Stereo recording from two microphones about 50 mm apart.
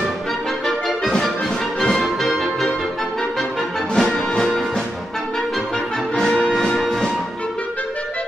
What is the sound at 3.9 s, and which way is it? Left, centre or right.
Music, centre.